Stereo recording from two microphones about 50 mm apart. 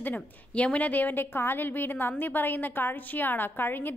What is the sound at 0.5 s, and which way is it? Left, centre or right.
A woman's voice, left.